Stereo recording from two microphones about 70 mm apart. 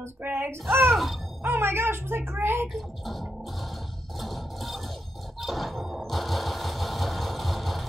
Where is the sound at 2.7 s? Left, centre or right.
Centre.